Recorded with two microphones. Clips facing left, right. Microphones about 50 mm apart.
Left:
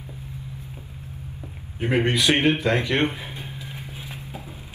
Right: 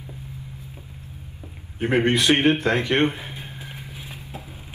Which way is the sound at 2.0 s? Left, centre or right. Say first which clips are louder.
Right 2 dB; right.